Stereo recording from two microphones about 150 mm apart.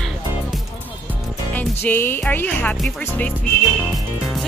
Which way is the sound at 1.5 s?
10° left (ahead or behind).